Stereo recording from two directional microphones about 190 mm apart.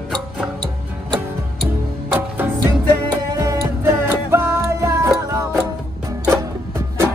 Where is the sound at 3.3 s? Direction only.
15° right (ahead or behind).